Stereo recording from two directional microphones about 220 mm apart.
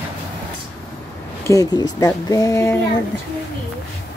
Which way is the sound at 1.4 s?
15° left (ahead or behind).